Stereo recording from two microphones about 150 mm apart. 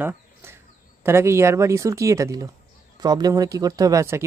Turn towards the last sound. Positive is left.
turn(degrees=-20)  # may be behind; listen again after turning